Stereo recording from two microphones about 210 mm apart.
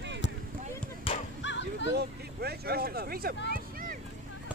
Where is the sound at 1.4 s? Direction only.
60° left (ahead or behind).